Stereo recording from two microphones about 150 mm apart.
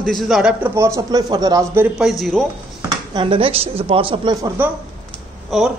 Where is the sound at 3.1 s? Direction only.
35° right (ahead or behind).